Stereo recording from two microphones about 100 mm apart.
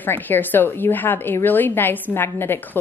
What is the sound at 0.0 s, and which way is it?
A woman's voice, 20° left (ahead or behind).